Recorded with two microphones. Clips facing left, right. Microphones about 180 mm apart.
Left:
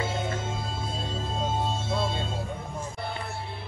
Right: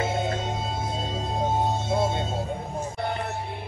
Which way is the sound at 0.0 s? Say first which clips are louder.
Right 4 dB; 20° right (ahead or behind).